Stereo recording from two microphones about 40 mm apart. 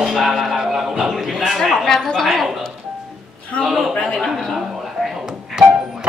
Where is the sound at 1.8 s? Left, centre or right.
Centre.